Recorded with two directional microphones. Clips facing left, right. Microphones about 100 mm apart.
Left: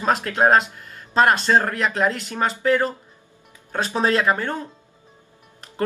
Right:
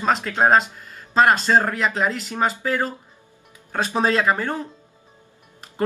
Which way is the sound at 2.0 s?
5° right (ahead or behind).